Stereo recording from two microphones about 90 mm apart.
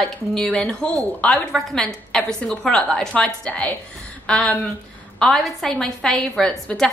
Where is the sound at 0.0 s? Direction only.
5° left (ahead or behind).